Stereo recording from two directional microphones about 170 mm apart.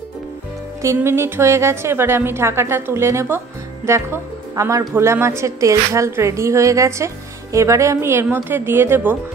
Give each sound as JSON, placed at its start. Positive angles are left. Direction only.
{"t": 0.8, "sound": "a woman's voice", "side_deg": -15}